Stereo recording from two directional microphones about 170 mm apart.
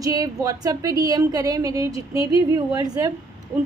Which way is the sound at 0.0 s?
20° right (ahead or behind).